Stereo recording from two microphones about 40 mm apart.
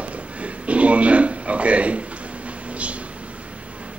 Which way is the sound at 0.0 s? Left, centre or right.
Right.